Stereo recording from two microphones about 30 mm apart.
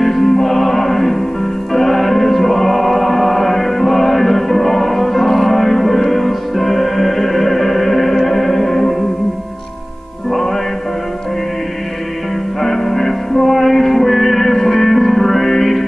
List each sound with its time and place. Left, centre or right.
0.0 s music: centre
12.5 s music: centre